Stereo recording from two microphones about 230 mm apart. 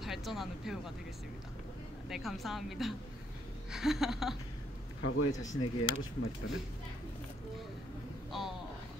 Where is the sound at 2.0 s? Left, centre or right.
Centre.